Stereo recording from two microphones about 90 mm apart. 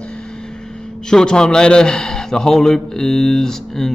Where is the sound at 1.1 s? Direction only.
10° left (ahead or behind).